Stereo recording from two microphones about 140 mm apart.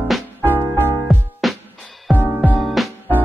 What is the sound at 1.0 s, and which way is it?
Music, centre (ahead or behind).